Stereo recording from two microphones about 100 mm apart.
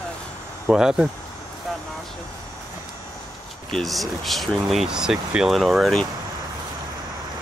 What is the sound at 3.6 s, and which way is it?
Speech, 5° left (ahead or behind).